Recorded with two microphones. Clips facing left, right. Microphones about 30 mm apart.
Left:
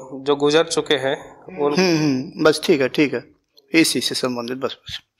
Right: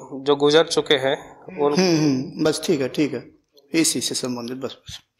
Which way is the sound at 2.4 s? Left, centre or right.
Left.